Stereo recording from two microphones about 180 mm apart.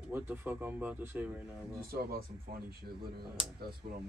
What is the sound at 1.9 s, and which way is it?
Speech, 55° right (ahead or behind).